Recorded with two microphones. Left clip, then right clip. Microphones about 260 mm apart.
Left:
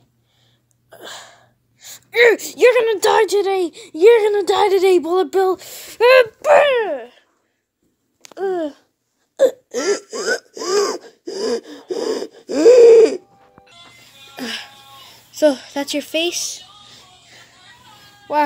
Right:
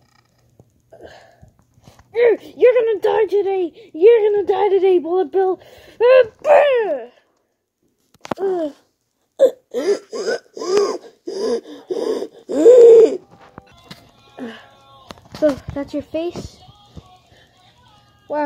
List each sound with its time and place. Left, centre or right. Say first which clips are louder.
1.0 s hiccup: left 7 dB; left
2.1 s a sound: left 2 dB; left
2.6 s speech: left 1 dB; left
3.5 s speech: left 1 dB; left
4.3 s speech: left 1 dB; left
9.8 s gasp: even; centre
12.6 s a sound: right 1 dB; left
12.9 s bird: right 1 dB; centre
14.3 s music: left 6 dB; left
15.4 s speech: left 2 dB; left